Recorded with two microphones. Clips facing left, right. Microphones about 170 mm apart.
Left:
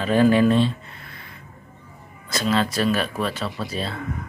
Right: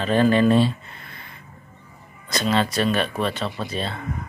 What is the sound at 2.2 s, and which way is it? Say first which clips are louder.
Speech: even; 5° left (ahead or behind).